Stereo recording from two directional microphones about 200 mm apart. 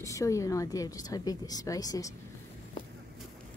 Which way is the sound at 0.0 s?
15° left (ahead or behind).